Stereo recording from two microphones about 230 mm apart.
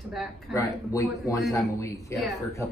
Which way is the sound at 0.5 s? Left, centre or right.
Centre.